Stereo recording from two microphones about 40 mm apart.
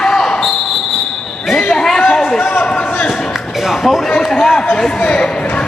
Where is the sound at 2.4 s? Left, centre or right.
Left.